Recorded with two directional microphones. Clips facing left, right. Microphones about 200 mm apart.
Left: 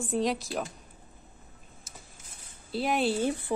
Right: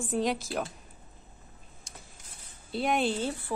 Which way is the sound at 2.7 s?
Centre (ahead or behind).